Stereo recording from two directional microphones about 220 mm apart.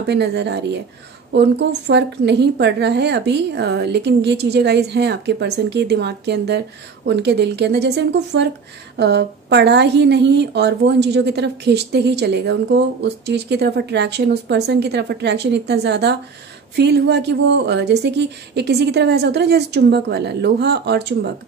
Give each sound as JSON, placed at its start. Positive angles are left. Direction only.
{"t": 0.0, "sound": "a woman's voice", "side_deg": -50}